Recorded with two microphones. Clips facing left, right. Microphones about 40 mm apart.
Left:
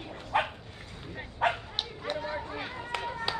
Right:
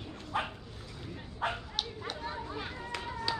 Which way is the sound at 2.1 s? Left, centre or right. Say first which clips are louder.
Left 6 dB; left.